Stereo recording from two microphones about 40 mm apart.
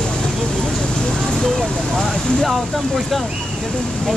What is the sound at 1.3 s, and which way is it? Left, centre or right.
Speech, centre.